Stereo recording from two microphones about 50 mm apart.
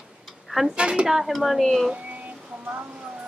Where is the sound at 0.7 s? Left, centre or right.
Centre.